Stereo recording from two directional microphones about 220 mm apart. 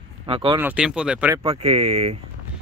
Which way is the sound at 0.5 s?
5° right (ahead or behind).